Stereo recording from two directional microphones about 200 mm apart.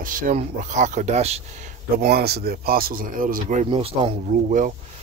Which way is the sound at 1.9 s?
50° right (ahead or behind).